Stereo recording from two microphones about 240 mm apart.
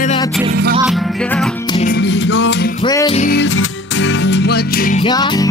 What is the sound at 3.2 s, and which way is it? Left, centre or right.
Music, left.